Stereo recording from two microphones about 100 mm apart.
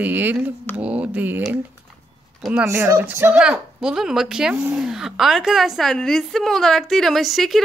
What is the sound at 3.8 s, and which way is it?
Speech, 5° right (ahead or behind).